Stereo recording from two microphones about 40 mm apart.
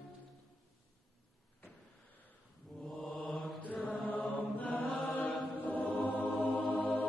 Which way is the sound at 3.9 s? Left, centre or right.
Left.